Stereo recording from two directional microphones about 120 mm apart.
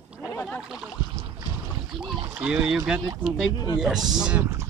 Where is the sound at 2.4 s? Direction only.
5° right (ahead or behind).